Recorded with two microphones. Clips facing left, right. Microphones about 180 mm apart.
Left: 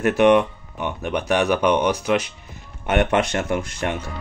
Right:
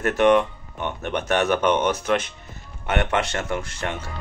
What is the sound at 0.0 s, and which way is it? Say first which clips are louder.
Speech: left 2 dB; 15° left (ahead or behind).